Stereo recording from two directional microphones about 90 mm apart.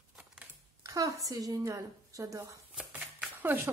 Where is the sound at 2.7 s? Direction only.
10° right (ahead or behind).